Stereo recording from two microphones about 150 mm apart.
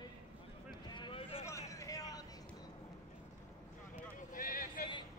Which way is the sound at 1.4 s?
20° left (ahead or behind).